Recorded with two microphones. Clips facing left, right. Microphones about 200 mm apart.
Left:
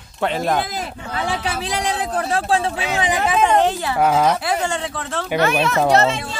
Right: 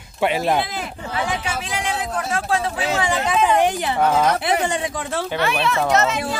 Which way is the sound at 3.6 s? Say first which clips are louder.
Left 1 dB; 15° right (ahead or behind).